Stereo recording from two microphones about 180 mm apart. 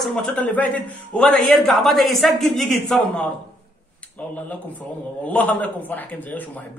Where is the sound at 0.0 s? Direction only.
5° left (ahead or behind).